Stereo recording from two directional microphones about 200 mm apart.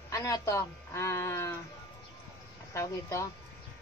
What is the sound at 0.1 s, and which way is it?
A woman's voice, 15° left (ahead or behind).